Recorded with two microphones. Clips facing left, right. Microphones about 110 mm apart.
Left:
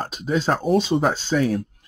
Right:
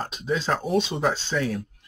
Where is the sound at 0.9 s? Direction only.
35° left (ahead or behind).